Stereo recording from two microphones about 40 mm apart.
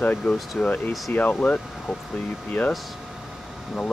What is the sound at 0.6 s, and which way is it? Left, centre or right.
Speech, left.